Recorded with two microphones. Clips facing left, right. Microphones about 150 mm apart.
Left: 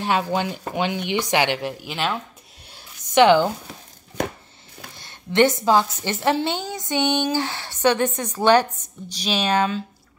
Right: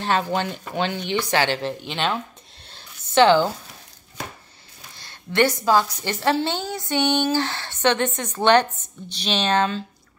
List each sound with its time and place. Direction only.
0.0 s a woman's voice: 15° left (ahead or behind)
2.7 s a sound: 15° left (ahead or behind)
4.2 s chopping: 65° left (ahead or behind)
5.0 s a woman's voice: 20° left (ahead or behind)